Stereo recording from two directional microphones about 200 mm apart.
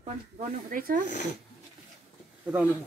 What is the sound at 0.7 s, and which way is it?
Speech, 45° right (ahead or behind).